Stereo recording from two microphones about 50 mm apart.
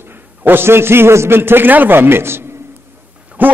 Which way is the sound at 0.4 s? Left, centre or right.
Right.